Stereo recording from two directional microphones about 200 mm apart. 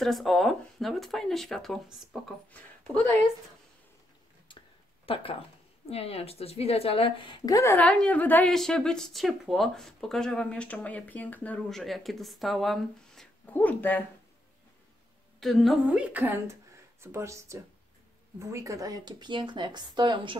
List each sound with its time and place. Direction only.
0.0 s speech: centre (ahead or behind)
5.0 s speech: 25° left (ahead or behind); by 14.0 s 10° left (ahead or behind)
15.4 s speech: centre (ahead or behind); by 20.3 s 20° right (ahead or behind)